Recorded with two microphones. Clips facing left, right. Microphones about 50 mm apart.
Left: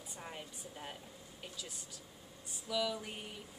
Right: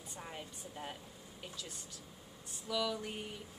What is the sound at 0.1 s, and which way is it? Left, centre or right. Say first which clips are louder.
Speech: right 1 dB; centre.